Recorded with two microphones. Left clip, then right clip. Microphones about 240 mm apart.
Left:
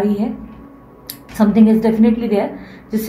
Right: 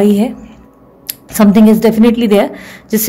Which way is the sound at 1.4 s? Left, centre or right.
Right.